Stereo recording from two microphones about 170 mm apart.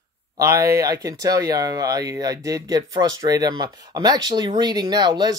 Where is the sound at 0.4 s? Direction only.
20° right (ahead or behind).